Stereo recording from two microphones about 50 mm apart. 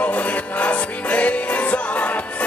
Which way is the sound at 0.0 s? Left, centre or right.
Left.